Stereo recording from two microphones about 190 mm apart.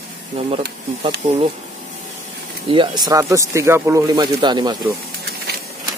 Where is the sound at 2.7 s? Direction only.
25° right (ahead or behind).